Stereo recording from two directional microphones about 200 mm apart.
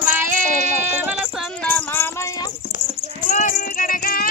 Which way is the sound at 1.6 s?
10° left (ahead or behind).